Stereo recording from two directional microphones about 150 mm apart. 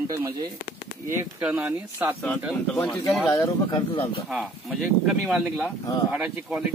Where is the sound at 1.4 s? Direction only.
10° right (ahead or behind).